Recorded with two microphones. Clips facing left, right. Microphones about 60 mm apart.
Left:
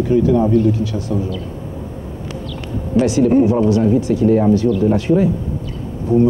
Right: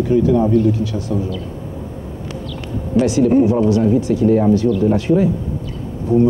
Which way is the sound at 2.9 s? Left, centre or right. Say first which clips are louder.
Even; left.